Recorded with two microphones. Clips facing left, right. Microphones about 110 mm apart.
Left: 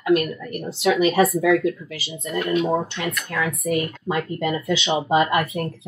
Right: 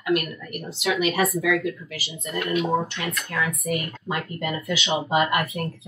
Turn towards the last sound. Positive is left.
turn(degrees=30)  # may be behind; listen again after turning